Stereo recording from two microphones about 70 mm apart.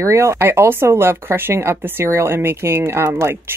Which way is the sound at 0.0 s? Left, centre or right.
Right.